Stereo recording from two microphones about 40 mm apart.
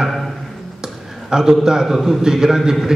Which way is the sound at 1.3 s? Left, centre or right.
Centre.